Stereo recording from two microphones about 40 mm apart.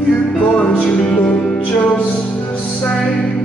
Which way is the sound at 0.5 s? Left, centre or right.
Left.